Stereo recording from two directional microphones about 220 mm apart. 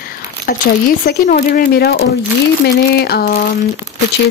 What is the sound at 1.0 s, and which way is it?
Speech, 40° left (ahead or behind).